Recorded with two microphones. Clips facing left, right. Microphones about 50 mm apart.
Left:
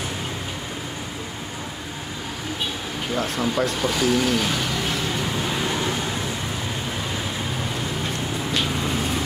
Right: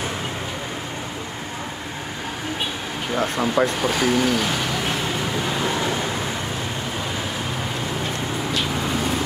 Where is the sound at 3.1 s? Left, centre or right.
Right.